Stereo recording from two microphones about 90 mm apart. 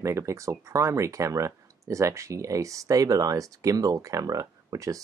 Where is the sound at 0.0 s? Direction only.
35° right (ahead or behind).